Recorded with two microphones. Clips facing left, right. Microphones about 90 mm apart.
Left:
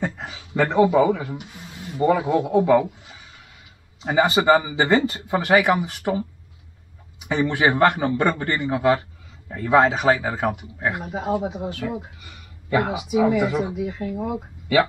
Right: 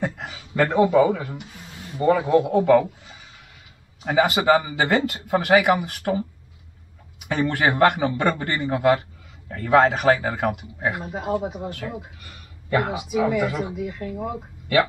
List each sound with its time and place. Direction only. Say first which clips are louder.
0.0 s a sound: even; 5° right (ahead or behind)
0.7 s speech: left 1 dB; 5° left (ahead or behind)
4.1 s speech: left 1 dB; centre (ahead or behind)
7.2 s speech: left 1 dB; 5° left (ahead or behind)
11.4 s speech: left 2 dB; 10° left (ahead or behind)
14.1 s speech: left 2 dB; 10° left (ahead or behind)